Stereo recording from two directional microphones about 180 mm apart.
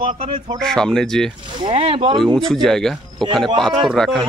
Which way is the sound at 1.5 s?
30° right (ahead or behind).